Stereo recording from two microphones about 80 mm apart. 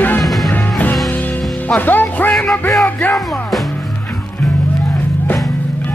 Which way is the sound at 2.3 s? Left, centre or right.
Centre.